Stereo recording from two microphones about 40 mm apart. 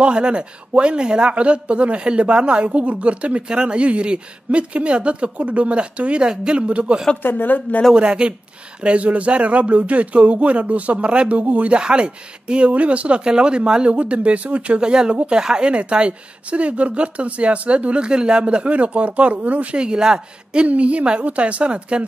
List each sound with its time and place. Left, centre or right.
0.0 s speech: right
7.2 s a woman's voice: left
7.9 s speech: right
11.7 s speech: right
13.2 s speech: right
14.8 s speech: right
18.0 s speech: right
19.8 s speech: centre
20.6 s speech: right